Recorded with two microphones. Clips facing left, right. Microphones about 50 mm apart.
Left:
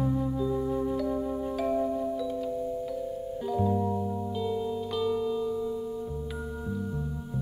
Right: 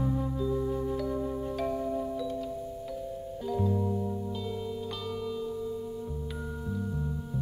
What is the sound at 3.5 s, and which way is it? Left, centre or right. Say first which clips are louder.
Music: left 2 dB; centre.